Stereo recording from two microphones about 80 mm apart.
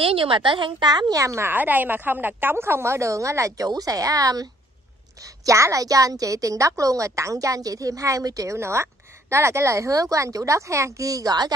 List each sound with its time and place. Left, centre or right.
0.2 s a woman's voice: right
1.1 s a woman's voice: right
1.5 s a woman's voice: right